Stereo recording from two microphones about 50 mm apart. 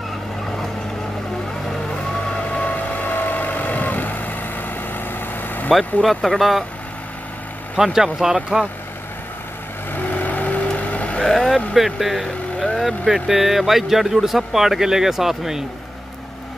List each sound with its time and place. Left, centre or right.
2.5 s vehicle: left
6.0 s speech: centre
7.7 s speech: centre
9.9 s vehicle: left
11.1 s speech: centre